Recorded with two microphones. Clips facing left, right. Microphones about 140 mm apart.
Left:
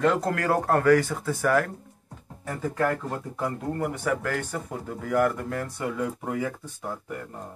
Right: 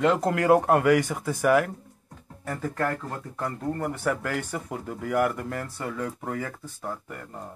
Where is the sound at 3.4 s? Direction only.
5° left (ahead or behind).